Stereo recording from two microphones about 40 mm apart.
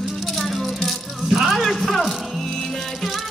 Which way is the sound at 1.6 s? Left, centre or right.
Centre.